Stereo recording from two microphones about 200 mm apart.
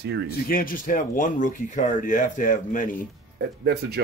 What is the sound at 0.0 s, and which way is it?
Speech, 60° right (ahead or behind).